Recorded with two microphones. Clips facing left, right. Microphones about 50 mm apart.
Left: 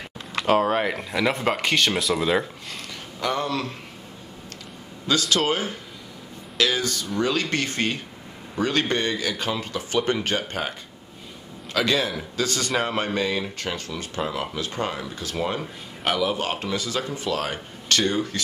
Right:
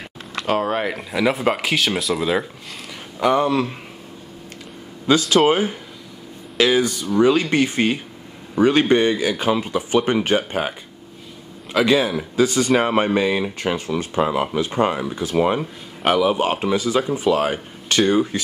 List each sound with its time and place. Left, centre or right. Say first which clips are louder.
0.5 s speech: even; centre
3.2 s speech: right 8 dB; centre
5.3 s speech: right 7 dB; right
11.7 s speech: right 6 dB; centre